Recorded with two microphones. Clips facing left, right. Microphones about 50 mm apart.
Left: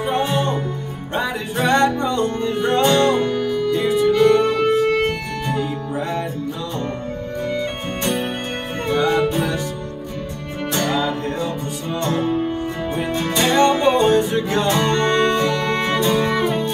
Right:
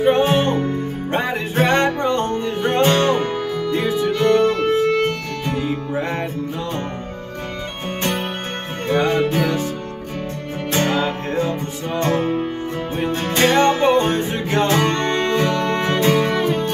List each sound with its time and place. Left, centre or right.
0.0 s music: right
5.6 s music: right
8.8 s music: right
10.7 s music: right
15.0 s music: right